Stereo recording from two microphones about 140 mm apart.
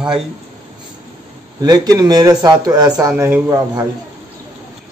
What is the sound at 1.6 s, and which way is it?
Speech, 25° right (ahead or behind).